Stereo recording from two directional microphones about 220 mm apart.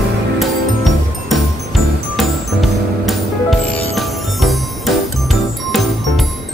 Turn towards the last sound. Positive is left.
turn(degrees=0)  # may be behind; listen again after turning